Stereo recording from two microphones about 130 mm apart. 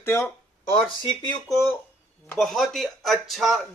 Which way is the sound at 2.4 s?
Centre (ahead or behind).